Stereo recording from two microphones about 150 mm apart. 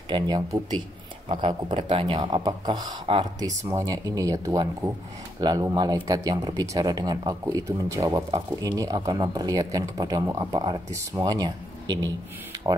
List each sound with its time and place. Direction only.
0.1 s speech: 30° right (ahead or behind)